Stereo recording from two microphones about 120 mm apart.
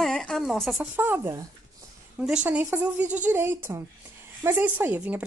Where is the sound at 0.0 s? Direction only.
5° left (ahead or behind).